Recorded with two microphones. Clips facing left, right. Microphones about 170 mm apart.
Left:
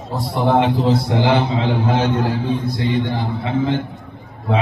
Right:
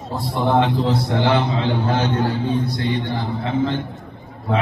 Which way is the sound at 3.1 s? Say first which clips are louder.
Left 1 dB; 15° left (ahead or behind).